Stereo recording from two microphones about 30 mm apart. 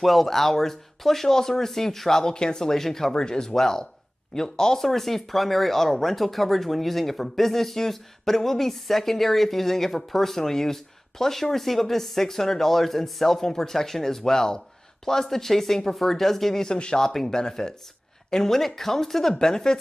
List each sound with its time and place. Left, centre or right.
0.0 s speech: centre
4.7 s speech: centre
19.4 s speech: left